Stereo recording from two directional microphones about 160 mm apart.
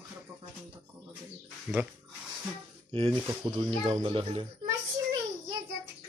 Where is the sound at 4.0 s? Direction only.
30° right (ahead or behind).